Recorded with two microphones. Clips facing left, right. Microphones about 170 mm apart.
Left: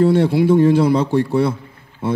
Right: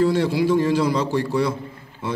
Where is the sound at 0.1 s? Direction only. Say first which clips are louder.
Left 5 dB; 55° left (ahead or behind).